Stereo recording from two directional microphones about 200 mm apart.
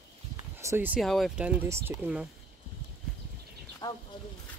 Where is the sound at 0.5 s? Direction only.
10° right (ahead or behind).